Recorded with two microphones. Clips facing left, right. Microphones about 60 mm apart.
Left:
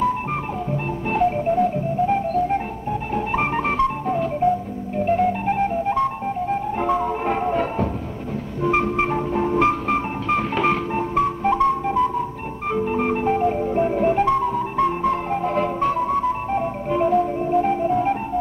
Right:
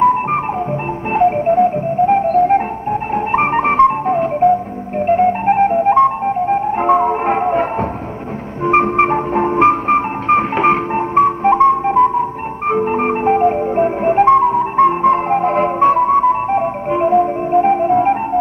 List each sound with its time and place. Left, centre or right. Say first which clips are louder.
0.0 s music: right 9 dB; right
8.6 s music: right 8 dB; right